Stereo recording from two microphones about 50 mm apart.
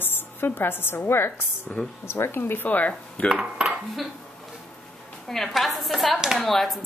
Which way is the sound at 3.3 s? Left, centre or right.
Centre.